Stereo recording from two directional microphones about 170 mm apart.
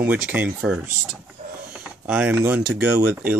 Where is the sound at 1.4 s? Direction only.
50° right (ahead or behind).